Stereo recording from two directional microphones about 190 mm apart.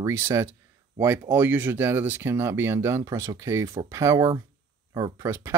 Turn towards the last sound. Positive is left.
turn(degrees=-15)  # may be behind; listen again after turning